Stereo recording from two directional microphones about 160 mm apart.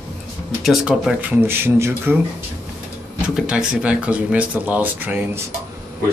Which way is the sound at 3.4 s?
5° right (ahead or behind).